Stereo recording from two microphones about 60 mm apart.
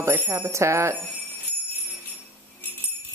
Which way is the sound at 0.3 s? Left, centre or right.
Right.